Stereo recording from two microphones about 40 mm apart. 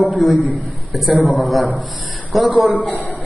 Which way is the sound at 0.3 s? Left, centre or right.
Right.